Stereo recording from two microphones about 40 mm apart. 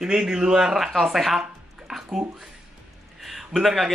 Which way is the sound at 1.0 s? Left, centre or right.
Centre.